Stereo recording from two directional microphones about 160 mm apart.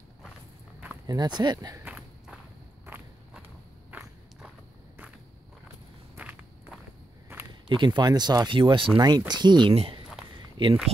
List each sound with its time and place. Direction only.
1.0 s speech: 25° right (ahead or behind)
1.9 s walk: 5° right (ahead or behind)
2.9 s a sound: 10° right (ahead or behind)
6.1 s walk: 10° right (ahead or behind)
7.3 s a sound: 15° right (ahead or behind)
7.6 s speech: 30° right (ahead or behind)
10.3 s walk: 30° right (ahead or behind)